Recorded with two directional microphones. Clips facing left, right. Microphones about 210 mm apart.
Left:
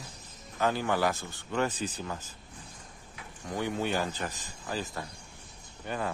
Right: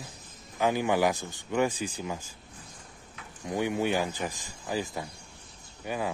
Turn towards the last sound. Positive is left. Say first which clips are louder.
# right 2 dB
turn(degrees=-10)  # may be behind; listen again after turning